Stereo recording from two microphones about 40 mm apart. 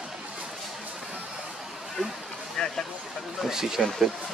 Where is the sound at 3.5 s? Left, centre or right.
Centre.